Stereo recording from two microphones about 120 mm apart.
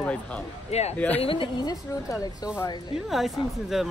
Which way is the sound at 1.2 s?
45° left (ahead or behind).